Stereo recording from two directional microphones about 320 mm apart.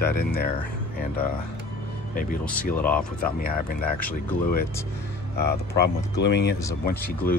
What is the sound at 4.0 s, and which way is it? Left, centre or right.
Speech, centre.